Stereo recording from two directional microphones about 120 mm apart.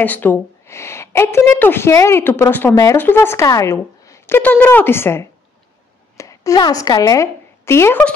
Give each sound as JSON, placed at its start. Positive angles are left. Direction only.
{"t": 0.0, "sound": "a woman's voice", "side_deg": 15}